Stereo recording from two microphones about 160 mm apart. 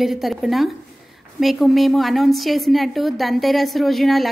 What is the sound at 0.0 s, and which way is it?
A woman's voice, centre (ahead or behind).